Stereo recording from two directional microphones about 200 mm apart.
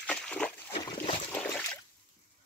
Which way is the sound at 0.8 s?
25° left (ahead or behind).